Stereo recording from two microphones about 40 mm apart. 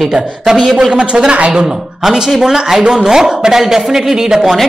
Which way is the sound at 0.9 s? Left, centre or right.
Right.